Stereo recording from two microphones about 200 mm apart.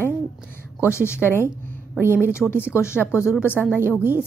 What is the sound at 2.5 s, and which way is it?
Speech, 10° right (ahead or behind).